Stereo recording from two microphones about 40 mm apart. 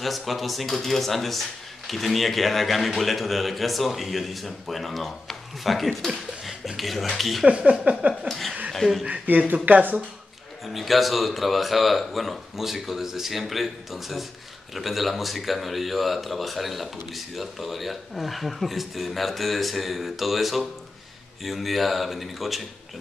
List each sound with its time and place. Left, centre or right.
0.0 s speech: centre
7.4 s speech: right
8.3 s speech: centre
9.0 s speech: right
9.4 s speech: right
10.7 s speech: centre